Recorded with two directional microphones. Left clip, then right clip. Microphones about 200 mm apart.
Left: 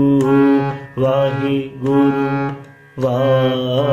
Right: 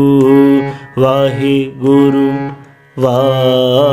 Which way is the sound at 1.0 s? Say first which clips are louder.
Right 5 dB; 55° right (ahead or behind).